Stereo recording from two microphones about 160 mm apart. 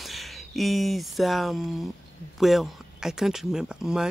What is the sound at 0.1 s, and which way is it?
Speech, centre (ahead or behind).